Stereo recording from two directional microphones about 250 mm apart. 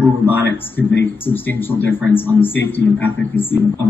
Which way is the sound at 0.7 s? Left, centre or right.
Centre.